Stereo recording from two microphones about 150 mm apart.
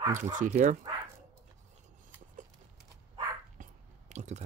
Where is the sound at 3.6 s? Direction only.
60° right (ahead or behind).